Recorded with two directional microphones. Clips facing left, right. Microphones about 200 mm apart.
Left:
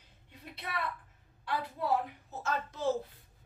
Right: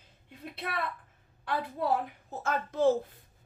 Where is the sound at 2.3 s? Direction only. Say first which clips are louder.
Right 5 dB; 55° right (ahead or behind).